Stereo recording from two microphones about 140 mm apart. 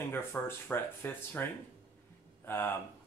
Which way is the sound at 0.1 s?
15° left (ahead or behind).